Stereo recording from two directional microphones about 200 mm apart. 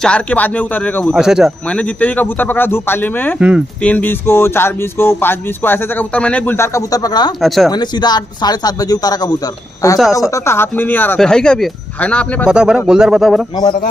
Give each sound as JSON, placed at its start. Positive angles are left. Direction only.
{"t": 0.0, "sound": "speech", "side_deg": 5}
{"t": 3.3, "sound": "speech", "side_deg": -5}
{"t": 3.8, "sound": "speech", "side_deg": 10}
{"t": 7.4, "sound": "speech", "side_deg": 0}
{"t": 7.7, "sound": "speech", "side_deg": 20}